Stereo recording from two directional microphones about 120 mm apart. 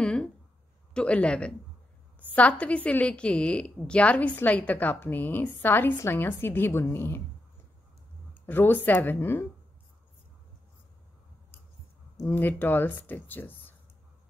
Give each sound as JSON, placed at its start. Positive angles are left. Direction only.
{"t": 0.0, "sound": "a sound", "side_deg": 10}
{"t": 0.9, "sound": "a woman's voice", "side_deg": 10}
{"t": 8.5, "sound": "a woman's voice", "side_deg": 15}
{"t": 12.2, "sound": "a woman's voice", "side_deg": 15}